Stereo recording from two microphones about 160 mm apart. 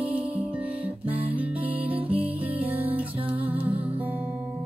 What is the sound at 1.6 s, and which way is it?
Music, 35° right (ahead or behind).